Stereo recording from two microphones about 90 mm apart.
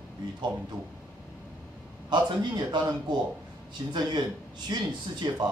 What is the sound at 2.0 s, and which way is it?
Speech, 55° right (ahead or behind).